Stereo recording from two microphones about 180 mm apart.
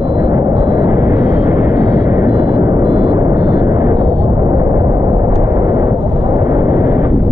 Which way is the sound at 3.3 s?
20° right (ahead or behind).